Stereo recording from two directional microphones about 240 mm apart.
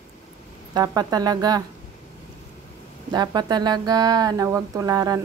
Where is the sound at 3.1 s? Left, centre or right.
Centre.